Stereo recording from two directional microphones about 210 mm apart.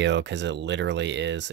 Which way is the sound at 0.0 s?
55° right (ahead or behind).